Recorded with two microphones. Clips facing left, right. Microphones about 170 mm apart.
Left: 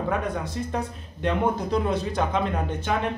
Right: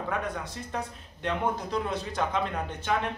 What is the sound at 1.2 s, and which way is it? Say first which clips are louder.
A man's voice: left 5 dB; 15° left (ahead or behind).